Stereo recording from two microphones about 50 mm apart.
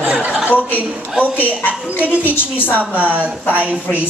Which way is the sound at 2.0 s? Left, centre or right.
Right.